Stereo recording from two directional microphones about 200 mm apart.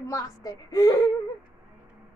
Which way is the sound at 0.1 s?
15° left (ahead or behind).